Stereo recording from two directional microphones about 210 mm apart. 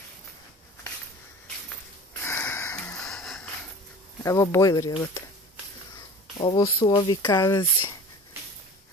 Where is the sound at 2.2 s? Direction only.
10° left (ahead or behind).